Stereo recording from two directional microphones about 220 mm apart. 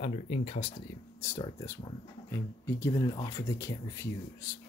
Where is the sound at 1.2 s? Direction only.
15° left (ahead or behind).